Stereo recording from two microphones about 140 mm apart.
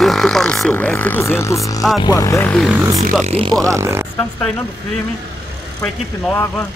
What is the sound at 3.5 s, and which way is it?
Speech, 25° right (ahead or behind).